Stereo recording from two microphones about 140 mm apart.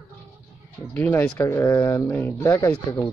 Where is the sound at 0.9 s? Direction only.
15° left (ahead or behind).